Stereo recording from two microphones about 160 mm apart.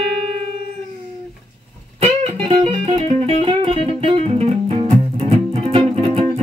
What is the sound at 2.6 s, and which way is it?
Music, 35° right (ahead or behind).